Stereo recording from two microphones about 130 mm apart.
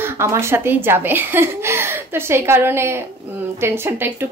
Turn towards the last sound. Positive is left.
turn(degrees=-20)  # may be behind; listen again after turning